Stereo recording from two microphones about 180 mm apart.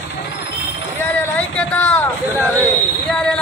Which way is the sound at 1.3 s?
10° left (ahead or behind).